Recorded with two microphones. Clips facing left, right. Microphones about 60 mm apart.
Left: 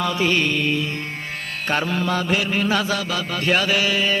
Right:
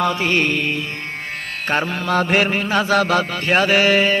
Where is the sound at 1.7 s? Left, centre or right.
Right.